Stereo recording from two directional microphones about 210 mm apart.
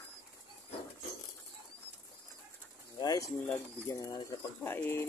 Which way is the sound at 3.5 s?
15° left (ahead or behind).